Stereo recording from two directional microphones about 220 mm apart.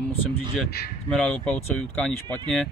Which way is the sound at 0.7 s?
45° left (ahead or behind).